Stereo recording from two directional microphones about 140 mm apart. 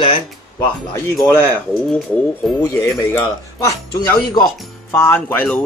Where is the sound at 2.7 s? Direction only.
15° left (ahead or behind).